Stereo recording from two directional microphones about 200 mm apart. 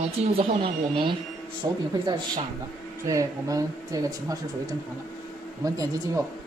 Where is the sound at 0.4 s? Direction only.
25° right (ahead or behind).